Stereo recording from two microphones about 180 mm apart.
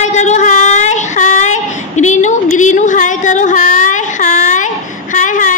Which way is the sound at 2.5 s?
40° left (ahead or behind).